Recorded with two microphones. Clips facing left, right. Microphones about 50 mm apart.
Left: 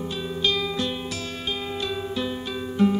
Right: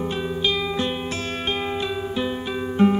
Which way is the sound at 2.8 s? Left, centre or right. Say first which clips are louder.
Right 3 dB; right.